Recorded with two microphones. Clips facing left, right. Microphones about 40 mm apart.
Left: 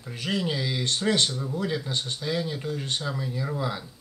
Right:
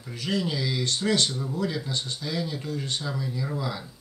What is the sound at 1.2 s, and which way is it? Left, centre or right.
Speech, centre.